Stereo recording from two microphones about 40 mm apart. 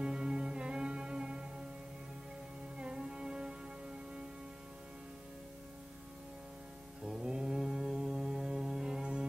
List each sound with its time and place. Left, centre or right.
0.0 s music: right
2.8 s music: right
7.1 s music: right